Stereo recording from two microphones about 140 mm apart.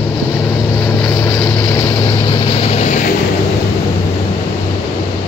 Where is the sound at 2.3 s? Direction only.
45° left (ahead or behind).